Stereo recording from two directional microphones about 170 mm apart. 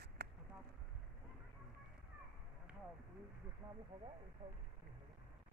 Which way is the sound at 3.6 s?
10° right (ahead or behind).